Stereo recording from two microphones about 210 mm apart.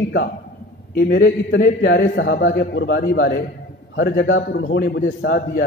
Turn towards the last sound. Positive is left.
turn(degrees=55)  # may be behind; listen again after turning